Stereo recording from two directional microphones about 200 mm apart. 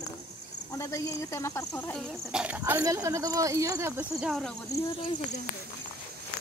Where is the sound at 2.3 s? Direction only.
5° right (ahead or behind).